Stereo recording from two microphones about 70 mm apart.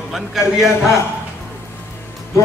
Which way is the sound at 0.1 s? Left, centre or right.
Centre.